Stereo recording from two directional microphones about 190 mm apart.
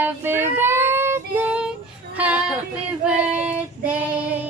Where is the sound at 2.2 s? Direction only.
5° right (ahead or behind).